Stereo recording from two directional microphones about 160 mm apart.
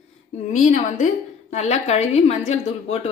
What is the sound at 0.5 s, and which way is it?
A woman's voice, 50° left (ahead or behind).